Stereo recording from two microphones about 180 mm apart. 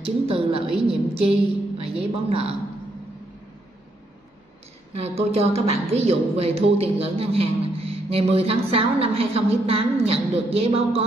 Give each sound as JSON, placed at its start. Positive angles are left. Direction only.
{"t": 0.0, "sound": "a woman's voice", "side_deg": -35}
{"t": 5.0, "sound": "a woman's voice", "side_deg": -35}